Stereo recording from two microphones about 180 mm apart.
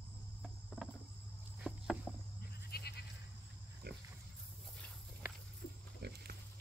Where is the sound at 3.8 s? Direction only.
60° right (ahead or behind).